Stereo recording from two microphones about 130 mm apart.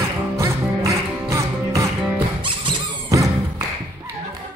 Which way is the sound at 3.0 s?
25° right (ahead or behind).